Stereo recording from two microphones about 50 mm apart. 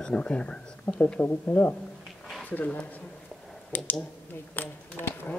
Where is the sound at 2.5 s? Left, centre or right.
Left.